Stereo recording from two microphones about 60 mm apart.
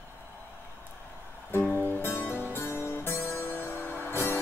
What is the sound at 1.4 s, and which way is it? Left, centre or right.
Music, left.